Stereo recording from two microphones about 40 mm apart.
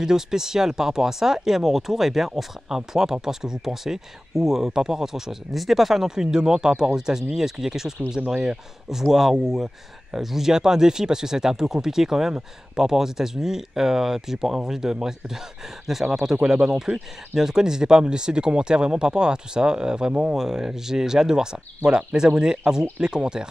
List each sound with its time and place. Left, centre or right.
0.0 s speech: centre
8.9 s speech: centre